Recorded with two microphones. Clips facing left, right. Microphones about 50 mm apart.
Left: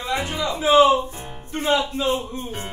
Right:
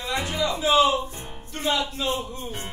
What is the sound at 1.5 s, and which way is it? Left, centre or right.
Music, left.